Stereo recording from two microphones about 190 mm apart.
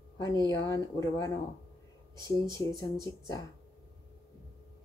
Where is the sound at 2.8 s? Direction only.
20° left (ahead or behind).